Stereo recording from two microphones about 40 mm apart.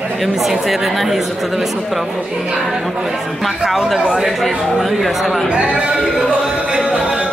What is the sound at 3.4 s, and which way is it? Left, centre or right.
A woman's voice, centre.